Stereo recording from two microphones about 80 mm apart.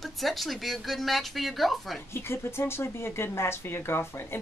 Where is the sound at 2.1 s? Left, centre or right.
Left.